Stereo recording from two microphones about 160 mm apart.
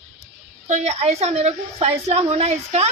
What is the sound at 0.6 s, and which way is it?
A woman's voice, 45° right (ahead or behind).